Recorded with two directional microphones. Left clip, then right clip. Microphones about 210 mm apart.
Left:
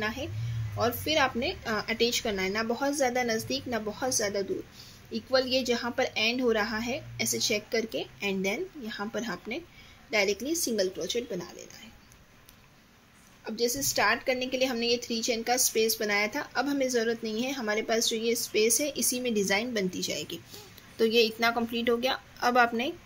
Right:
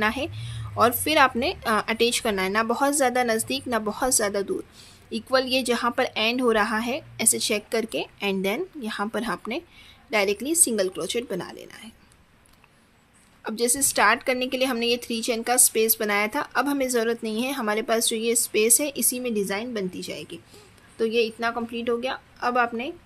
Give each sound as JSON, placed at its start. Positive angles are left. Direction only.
{"t": 0.0, "sound": "a woman's voice", "side_deg": -30}
{"t": 13.4, "sound": "a woman's voice", "side_deg": -30}